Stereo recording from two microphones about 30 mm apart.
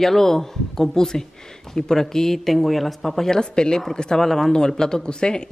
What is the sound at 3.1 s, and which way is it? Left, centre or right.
Speech, centre.